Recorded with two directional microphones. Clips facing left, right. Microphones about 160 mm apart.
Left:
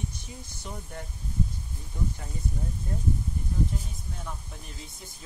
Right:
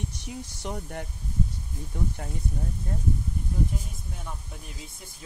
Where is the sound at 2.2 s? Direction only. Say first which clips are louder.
Right 5 dB; 55° right (ahead or behind).